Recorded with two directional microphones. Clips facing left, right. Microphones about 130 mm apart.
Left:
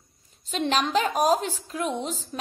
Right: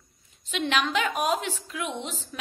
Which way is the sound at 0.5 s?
35° left (ahead or behind).